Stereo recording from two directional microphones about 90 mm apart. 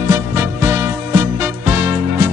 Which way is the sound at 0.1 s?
30° right (ahead or behind).